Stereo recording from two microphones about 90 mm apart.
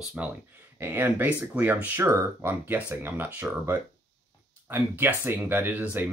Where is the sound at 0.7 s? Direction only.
25° right (ahead or behind).